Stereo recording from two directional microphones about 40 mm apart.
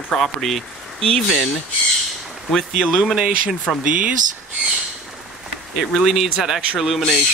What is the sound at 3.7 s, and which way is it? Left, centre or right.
Speech, centre.